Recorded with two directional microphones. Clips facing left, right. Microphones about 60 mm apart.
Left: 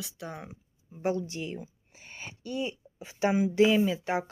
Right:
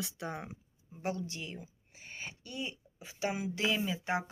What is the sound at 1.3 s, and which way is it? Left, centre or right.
Speech, left.